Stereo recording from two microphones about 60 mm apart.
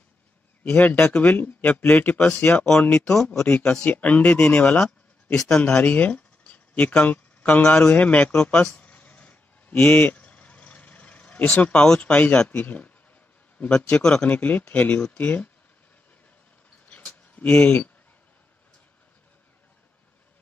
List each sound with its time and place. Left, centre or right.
0.7 s speech: left
2.4 s speech: centre
4.8 s a sound: centre
5.6 s speech: left
8.8 s vehicle: left
11.6 s speech: centre
13.9 s speech: centre
16.8 s a sound: left